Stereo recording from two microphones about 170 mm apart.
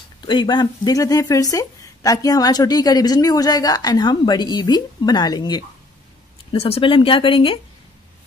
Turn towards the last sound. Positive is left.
turn(degrees=30)  # may be behind; listen again after turning